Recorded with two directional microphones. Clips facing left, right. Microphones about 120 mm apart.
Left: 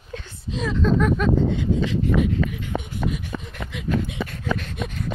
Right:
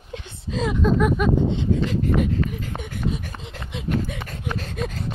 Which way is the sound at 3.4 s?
25° right (ahead or behind).